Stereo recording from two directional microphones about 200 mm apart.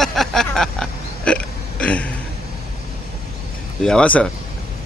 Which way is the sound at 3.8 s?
5° left (ahead or behind).